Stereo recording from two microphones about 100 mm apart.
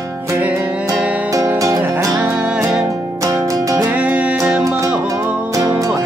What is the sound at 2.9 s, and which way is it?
Music, 35° right (ahead or behind).